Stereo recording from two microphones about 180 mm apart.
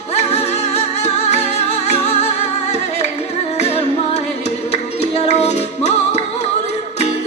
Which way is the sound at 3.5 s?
35° left (ahead or behind).